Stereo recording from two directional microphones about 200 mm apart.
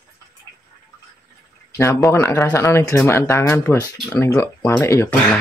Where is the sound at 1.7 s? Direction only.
15° left (ahead or behind).